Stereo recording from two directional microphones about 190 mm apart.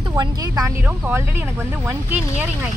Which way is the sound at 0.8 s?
10° right (ahead or behind).